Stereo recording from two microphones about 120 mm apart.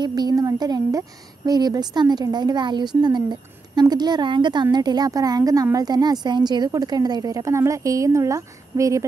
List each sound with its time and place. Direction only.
0.0 s a woman's voice: 35° right (ahead or behind)